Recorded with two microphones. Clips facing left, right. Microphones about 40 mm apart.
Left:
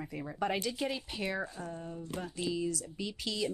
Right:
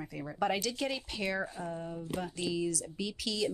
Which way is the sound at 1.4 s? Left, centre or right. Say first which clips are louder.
Right 2 dB; centre.